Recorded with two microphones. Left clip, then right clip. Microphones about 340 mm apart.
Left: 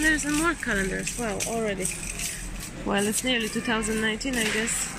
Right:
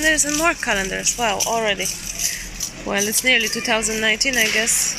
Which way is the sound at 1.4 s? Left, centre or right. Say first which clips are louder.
Right 8 dB; right.